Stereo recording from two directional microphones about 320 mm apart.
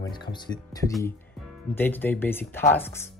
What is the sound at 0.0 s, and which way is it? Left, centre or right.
Speech, centre.